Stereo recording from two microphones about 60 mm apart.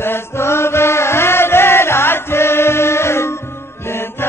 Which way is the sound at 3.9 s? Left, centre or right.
Left.